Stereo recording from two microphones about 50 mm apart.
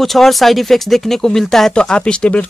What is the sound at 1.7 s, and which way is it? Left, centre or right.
Speech, centre.